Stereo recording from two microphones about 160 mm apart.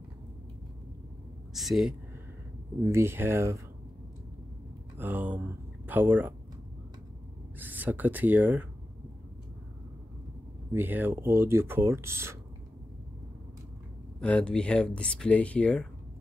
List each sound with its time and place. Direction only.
1.5 s speech: centre (ahead or behind)
2.8 s speech: 15° right (ahead or behind)
4.9 s speech: 10° right (ahead or behind)
7.5 s speech: 10° right (ahead or behind)
10.7 s speech: 10° right (ahead or behind)
14.2 s speech: 5° left (ahead or behind)